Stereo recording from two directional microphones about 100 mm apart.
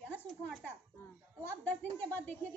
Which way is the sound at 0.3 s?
10° left (ahead or behind).